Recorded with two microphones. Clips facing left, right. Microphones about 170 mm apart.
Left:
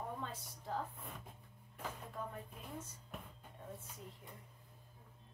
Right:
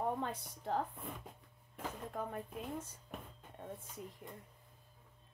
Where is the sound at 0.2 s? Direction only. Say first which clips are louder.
Right 6 dB; 65° right (ahead or behind).